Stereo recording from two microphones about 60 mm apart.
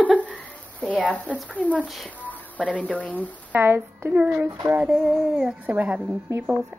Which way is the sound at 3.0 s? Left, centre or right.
Left.